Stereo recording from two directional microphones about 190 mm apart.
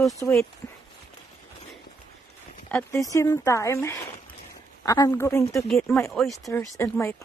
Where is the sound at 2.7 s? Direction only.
15° left (ahead or behind).